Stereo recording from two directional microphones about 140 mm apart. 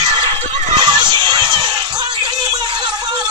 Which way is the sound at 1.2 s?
30° right (ahead or behind).